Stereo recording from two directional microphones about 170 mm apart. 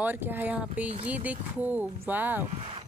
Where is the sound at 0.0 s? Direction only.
10° right (ahead or behind).